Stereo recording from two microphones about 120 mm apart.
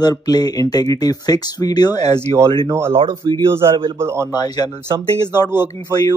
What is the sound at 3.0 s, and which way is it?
Speech, 45° right (ahead or behind).